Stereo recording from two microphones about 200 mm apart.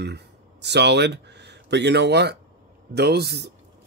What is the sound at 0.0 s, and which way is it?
Speech, 55° right (ahead or behind).